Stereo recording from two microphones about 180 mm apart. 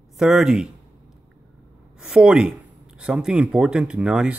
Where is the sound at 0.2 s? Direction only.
5° right (ahead or behind).